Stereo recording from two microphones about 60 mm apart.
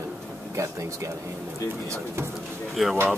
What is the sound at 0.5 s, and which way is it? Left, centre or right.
Speech, right.